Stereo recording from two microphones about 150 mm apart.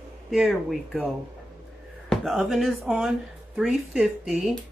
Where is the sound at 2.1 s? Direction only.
Centre (ahead or behind).